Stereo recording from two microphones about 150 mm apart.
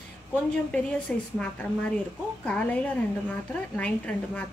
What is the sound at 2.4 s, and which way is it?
A woman's voice, 10° left (ahead or behind).